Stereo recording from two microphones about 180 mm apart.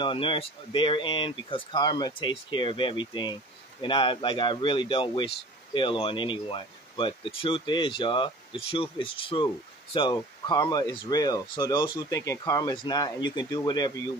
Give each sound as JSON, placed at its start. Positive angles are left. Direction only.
{"t": 0.0, "sound": "speech", "side_deg": 30}